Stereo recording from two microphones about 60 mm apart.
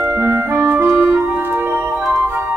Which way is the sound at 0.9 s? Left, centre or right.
Right.